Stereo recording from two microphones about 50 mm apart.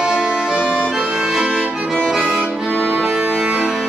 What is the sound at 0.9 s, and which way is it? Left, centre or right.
Accordion, centre.